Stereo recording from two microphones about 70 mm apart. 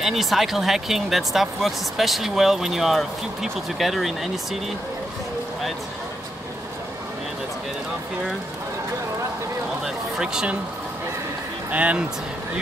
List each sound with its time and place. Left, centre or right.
0.0 s speech: centre
9.8 s a sound: centre
11.7 s speech: centre